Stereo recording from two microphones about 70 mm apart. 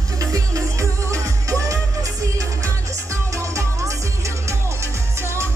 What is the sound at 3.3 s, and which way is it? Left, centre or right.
Music, right.